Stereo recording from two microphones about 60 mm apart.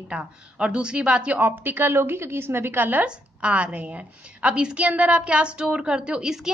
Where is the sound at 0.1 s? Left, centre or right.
Centre.